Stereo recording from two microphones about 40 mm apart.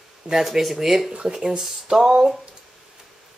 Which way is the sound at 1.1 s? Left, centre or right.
Right.